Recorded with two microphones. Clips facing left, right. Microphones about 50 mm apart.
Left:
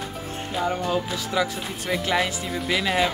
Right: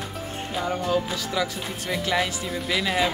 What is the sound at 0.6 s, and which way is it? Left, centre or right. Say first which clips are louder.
Speech: even; centre.